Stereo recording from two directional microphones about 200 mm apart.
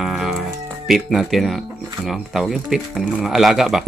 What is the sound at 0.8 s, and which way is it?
Speech, centre (ahead or behind).